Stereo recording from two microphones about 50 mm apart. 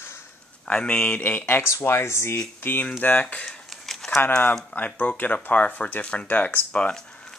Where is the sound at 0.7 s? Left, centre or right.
Left.